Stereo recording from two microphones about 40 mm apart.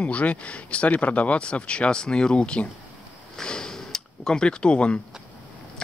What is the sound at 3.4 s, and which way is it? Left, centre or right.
Speech, centre.